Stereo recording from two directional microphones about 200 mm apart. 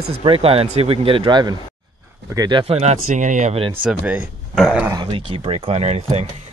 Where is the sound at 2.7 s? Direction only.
35° right (ahead or behind).